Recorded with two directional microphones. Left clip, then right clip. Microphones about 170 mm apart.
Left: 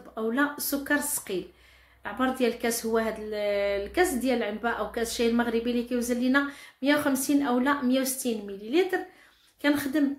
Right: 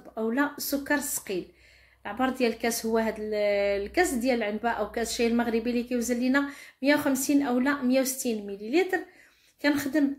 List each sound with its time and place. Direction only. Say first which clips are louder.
0.1 s speech: left 1 dB; 20° right (ahead or behind)